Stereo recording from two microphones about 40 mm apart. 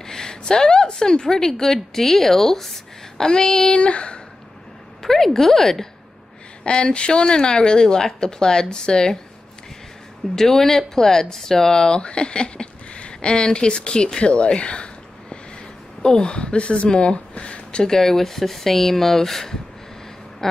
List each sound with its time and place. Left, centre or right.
0.0 s a woman's voice: centre
5.0 s speech: centre
6.6 s speech: left
10.3 s speech: centre; by 17.2 s left
17.3 s a sound: left
17.8 s speech: centre